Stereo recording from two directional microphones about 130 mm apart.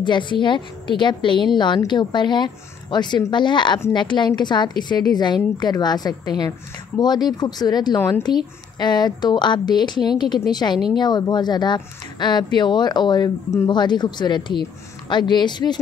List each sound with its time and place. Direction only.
0.0 s speech: 35° left (ahead or behind)